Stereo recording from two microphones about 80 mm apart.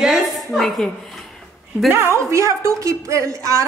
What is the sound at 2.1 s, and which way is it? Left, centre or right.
Speech, right.